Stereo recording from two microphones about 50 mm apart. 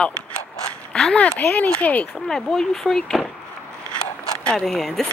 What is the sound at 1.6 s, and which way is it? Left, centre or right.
Speech, left.